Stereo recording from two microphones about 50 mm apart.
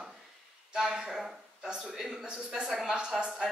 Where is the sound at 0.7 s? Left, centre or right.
Centre.